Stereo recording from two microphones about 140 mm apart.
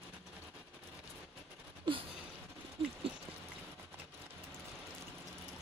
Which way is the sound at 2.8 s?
40° right (ahead or behind).